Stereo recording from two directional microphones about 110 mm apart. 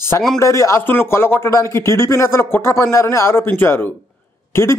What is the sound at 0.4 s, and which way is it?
Speech, 25° left (ahead or behind).